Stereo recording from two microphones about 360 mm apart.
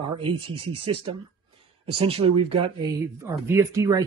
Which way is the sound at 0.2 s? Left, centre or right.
Centre.